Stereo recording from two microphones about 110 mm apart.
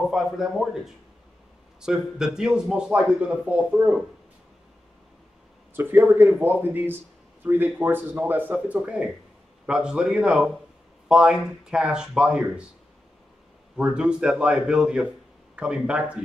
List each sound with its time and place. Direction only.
0.1 s speech: 5° right (ahead or behind)
5.8 s speech: 20° right (ahead or behind)
13.7 s speech: 10° right (ahead or behind)